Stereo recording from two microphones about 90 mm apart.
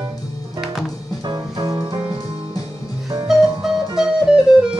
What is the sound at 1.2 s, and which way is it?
Music, 50° right (ahead or behind).